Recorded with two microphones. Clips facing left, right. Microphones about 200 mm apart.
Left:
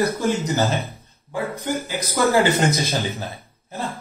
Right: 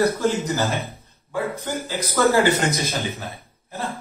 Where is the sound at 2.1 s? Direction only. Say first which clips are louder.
Even; 15° left (ahead or behind).